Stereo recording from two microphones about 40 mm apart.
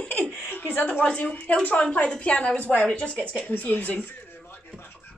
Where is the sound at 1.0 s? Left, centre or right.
Left.